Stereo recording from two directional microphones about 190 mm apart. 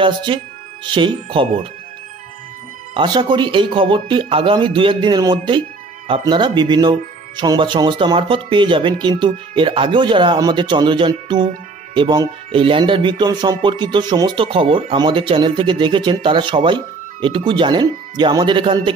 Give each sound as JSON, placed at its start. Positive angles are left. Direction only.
{"t": 0.0, "sound": "speech", "side_deg": -25}
{"t": 2.9, "sound": "speech", "side_deg": -25}